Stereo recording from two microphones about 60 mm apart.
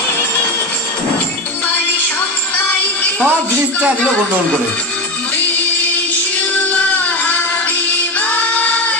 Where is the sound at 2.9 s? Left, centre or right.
Left.